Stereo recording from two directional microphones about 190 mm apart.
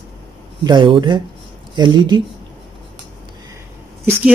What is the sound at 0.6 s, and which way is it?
Speech, 25° right (ahead or behind).